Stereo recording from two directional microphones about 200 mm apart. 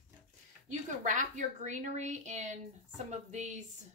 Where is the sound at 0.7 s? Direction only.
40° right (ahead or behind).